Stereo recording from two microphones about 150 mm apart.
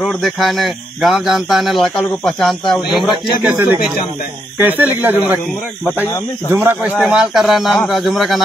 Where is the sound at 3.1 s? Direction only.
30° left (ahead or behind).